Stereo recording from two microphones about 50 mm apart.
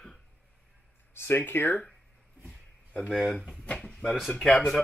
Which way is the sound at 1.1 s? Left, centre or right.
Left.